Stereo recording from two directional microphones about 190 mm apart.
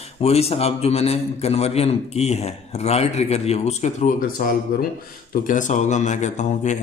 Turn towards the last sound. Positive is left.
turn(degrees=40)  # may be behind; listen again after turning